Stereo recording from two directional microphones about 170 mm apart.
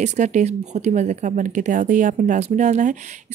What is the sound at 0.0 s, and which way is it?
A woman's voice, 45° right (ahead or behind).